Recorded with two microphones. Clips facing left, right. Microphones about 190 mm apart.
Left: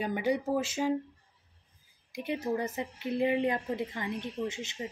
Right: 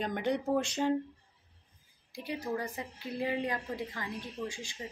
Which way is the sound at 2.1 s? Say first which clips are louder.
Left 4 dB; 20° left (ahead or behind).